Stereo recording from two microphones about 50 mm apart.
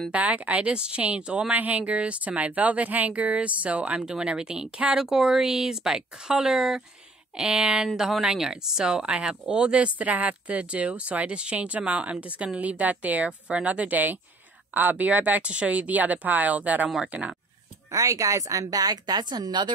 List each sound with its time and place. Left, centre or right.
0.1 s speech: right
4.0 s speech: centre
4.9 s a woman's voice: centre; by 17.4 s right
18.0 s speech: right